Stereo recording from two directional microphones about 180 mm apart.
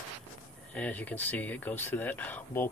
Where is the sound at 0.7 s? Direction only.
10° left (ahead or behind).